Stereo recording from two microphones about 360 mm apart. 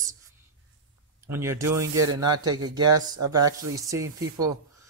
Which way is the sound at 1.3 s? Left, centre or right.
Centre.